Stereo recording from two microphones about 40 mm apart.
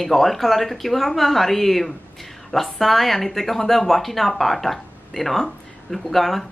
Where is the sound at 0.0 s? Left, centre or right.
Centre.